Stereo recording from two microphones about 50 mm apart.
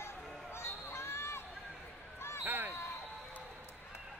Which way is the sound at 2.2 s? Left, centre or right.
Left.